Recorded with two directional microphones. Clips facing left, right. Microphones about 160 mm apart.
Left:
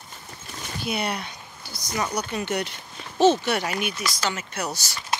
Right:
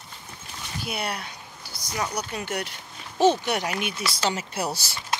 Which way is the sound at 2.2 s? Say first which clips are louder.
Left 3 dB; 10° right (ahead or behind).